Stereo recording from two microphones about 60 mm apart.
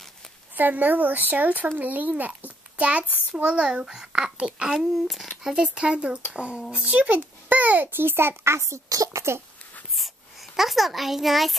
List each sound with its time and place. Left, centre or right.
0.6 s a child's voice: right; by 4.8 s centre
5.0 s speech: centre
5.5 s a child's voice: centre; by 8.5 s right
8.5 s a woman's voice: right
9.9 s a sound: centre